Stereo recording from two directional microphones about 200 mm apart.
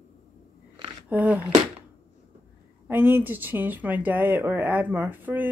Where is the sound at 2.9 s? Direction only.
10° right (ahead or behind).